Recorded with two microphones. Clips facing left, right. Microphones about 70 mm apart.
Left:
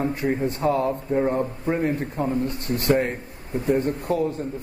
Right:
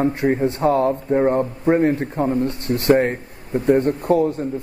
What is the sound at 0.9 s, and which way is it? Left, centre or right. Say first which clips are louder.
A man's voice: right 5 dB; right.